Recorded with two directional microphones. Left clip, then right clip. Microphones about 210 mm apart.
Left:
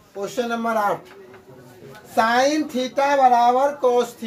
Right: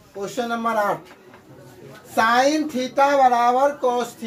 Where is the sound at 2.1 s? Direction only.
10° left (ahead or behind).